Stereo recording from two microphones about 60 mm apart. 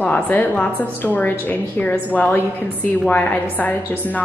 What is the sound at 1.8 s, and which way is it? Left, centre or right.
A woman's voice, left.